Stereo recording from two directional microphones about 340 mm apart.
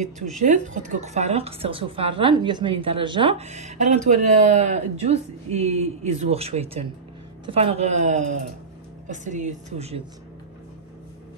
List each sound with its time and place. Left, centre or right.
0.4 s a woman's voice: right